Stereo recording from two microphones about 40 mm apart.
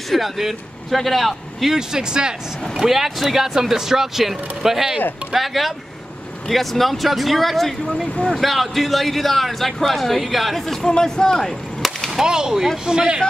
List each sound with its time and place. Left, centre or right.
0.1 s speech: centre
1.8 s speech: centre
2.8 s speech: centre
10.9 s speech: centre
12.1 s whip: centre
12.9 s speech: right